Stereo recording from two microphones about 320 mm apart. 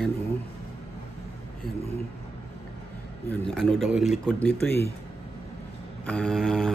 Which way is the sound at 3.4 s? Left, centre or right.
Centre.